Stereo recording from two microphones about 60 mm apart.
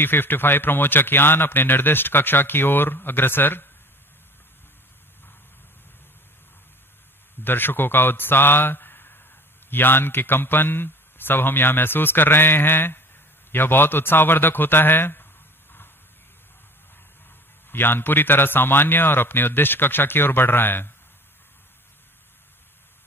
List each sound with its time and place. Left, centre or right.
0.0 s a man's voice: left
7.4 s a man's voice: left
17.6 s a man's voice: left